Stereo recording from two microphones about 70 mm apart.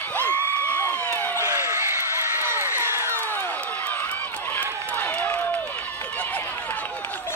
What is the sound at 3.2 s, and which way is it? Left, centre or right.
Run, left.